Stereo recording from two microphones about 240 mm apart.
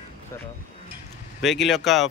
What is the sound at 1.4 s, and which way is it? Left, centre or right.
Speech, centre.